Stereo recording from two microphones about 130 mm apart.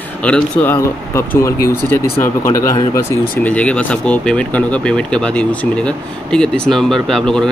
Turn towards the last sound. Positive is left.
turn(degrees=5)  # may be behind; listen again after turning